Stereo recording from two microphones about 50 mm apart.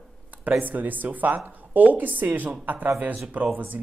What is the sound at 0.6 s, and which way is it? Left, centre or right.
Speech, right.